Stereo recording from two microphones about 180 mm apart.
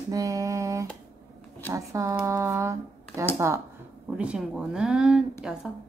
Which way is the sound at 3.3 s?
15° right (ahead or behind).